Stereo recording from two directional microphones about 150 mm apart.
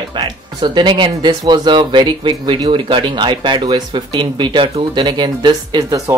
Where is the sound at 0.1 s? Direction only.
30° right (ahead or behind).